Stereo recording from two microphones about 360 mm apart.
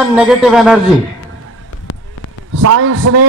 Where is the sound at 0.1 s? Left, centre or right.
Centre.